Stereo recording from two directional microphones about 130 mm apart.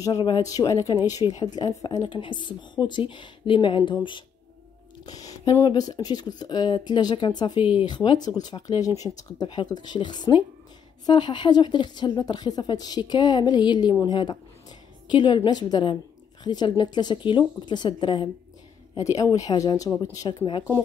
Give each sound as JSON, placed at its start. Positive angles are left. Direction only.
{"t": 0.0, "sound": "speech", "side_deg": 30}
{"t": 5.0, "sound": "a sound", "side_deg": 30}
{"t": 5.6, "sound": "speech", "side_deg": 30}
{"t": 18.9, "sound": "speech", "side_deg": 25}